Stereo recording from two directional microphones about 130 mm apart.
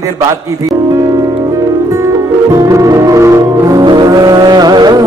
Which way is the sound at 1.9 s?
25° right (ahead or behind).